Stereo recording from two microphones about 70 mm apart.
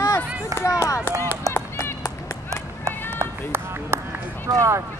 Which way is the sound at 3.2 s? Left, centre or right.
Right.